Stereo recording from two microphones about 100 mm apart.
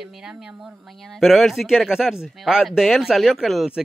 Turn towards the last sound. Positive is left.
turn(degrees=-5)  # may be behind; listen again after turning